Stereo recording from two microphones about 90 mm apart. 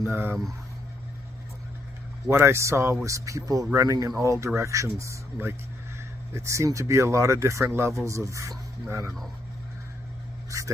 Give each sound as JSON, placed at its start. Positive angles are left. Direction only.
{"t": 0.1, "sound": "speech", "side_deg": -20}
{"t": 2.2, "sound": "speech", "side_deg": -30}
{"t": 10.5, "sound": "speech", "side_deg": -40}